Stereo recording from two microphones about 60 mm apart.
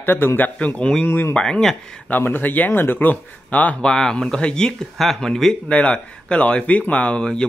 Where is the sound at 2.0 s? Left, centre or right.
Left.